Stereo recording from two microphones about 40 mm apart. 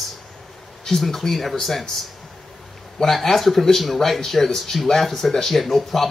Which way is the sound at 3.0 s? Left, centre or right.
Centre.